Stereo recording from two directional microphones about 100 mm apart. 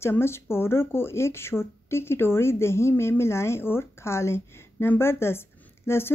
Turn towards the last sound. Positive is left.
turn(degrees=25)  # may be behind; listen again after turning